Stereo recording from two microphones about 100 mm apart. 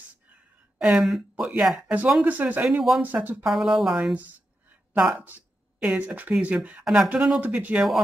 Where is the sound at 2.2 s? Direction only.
15° right (ahead or behind).